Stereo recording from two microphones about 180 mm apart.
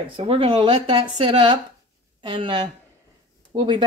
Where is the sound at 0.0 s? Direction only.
30° right (ahead or behind).